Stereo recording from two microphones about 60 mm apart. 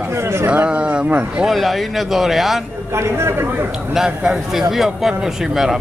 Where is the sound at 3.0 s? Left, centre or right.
Right.